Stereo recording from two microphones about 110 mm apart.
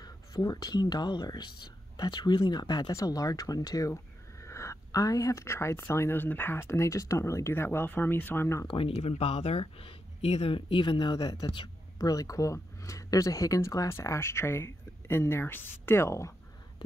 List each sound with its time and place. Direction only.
0.0 s speech: 35° left (ahead or behind)
8.6 s speech: 55° left (ahead or behind); by 16.3 s 25° left (ahead or behind)